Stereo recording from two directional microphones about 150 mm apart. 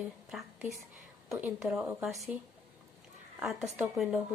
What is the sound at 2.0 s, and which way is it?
Speech, 5° right (ahead or behind).